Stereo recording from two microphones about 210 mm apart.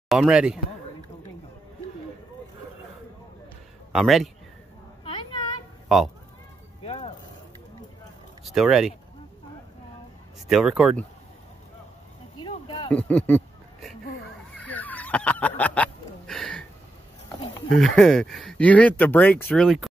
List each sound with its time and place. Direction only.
0.1 s speech: centre (ahead or behind)
3.9 s speech: centre (ahead or behind)
5.0 s a sound: 25° left (ahead or behind)
6.8 s music: 25° left (ahead or behind)
8.5 s speech: centre (ahead or behind)
10.5 s speech: centre (ahead or behind)
12.4 s a sound: 25° left (ahead or behind)
12.9 s a sound: 5° left (ahead or behind)
17.7 s speech: centre (ahead or behind)